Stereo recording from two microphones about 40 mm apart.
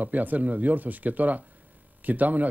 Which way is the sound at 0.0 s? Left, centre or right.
Right.